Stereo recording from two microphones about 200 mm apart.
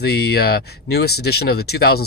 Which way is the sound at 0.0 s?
55° left (ahead or behind).